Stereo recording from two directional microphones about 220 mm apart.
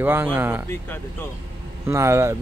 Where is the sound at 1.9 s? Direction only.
10° right (ahead or behind).